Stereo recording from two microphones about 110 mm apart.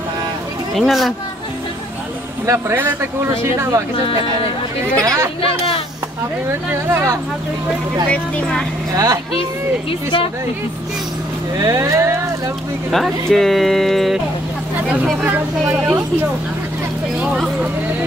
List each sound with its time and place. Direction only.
0.7 s speech: centre (ahead or behind)
2.4 s speech: 25° right (ahead or behind)
5.0 s speech: 30° right (ahead or behind)
6.7 s speech: 20° right (ahead or behind)
8.1 s speech: 10° left (ahead or behind)
8.9 s speech: 30° right (ahead or behind)
9.4 s speech: 55° left (ahead or behind)
11.5 s speech: 25° right (ahead or behind)
12.9 s speech: centre (ahead or behind)
15.2 s speech: 20° right (ahead or behind)
17.2 s a sound: 10° right (ahead or behind)